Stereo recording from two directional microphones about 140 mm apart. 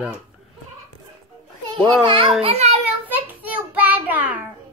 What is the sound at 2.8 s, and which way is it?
Child singing, 10° right (ahead or behind).